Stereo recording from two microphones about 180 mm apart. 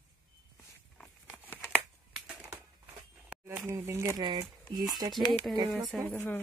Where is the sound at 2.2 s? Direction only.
5° right (ahead or behind).